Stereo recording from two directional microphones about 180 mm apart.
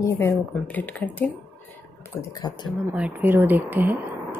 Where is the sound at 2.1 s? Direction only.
20° left (ahead or behind).